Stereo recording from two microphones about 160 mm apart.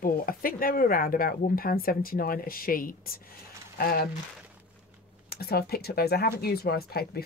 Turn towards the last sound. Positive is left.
turn(degrees=75)  # may be behind; listen again after turning